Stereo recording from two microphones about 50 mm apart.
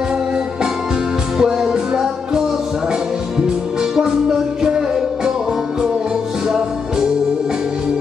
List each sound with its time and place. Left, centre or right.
1.4 s music: centre